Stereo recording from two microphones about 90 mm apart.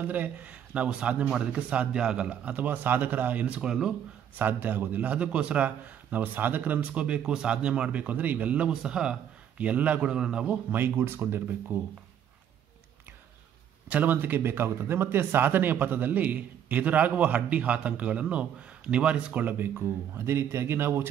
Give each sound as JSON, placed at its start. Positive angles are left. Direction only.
{"t": 0.0, "sound": "a man's voice", "side_deg": -20}
{"t": 4.4, "sound": "a man's voice", "side_deg": -20}
{"t": 13.8, "sound": "a man's voice", "side_deg": -15}